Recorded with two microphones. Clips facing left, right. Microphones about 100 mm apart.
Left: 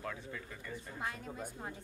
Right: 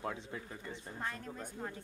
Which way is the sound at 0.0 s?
25° right (ahead or behind).